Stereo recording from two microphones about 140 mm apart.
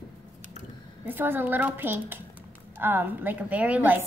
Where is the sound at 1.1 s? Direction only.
15° right (ahead or behind).